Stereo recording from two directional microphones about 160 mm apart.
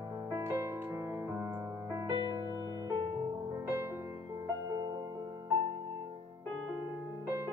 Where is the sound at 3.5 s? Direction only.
15° right (ahead or behind).